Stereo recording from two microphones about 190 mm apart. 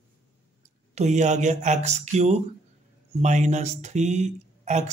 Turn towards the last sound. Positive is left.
turn(degrees=-40)  # may be behind; listen again after turning